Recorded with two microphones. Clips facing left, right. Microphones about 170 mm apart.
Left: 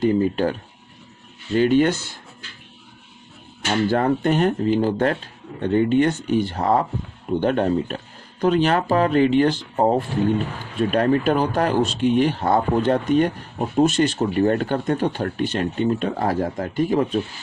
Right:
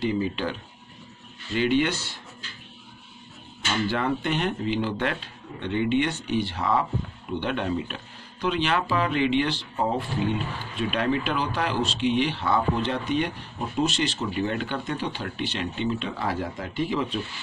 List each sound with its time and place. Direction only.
0.0 s speech: 50° left (ahead or behind)
3.6 s speech: 45° left (ahead or behind)